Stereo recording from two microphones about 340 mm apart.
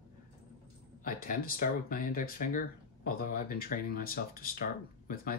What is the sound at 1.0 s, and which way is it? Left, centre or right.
Speech, left.